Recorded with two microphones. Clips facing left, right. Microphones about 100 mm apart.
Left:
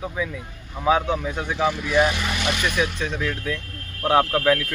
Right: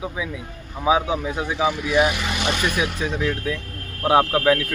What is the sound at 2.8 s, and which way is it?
Speech, 10° right (ahead or behind).